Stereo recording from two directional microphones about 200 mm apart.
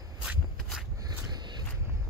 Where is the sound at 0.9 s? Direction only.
20° right (ahead or behind).